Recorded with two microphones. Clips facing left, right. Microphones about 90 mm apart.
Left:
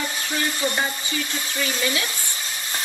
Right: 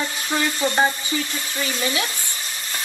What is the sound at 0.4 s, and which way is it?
Speech, 30° right (ahead or behind).